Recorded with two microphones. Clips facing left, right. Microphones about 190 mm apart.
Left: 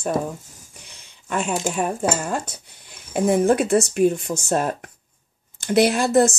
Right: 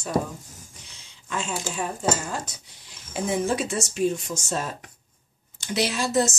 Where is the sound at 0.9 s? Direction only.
60° left (ahead or behind).